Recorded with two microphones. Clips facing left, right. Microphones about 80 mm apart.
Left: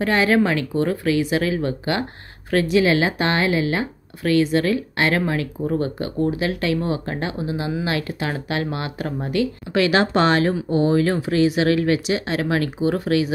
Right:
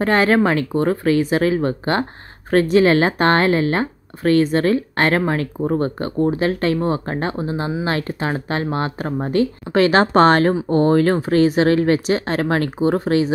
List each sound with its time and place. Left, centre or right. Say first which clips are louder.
0.0 s speech: right 2 dB; right